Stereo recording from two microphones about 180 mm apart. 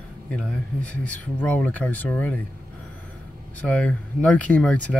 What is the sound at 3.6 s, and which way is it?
Speech, 5° left (ahead or behind).